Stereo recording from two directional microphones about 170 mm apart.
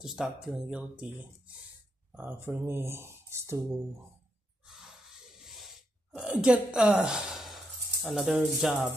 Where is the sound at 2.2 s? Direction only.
10° right (ahead or behind).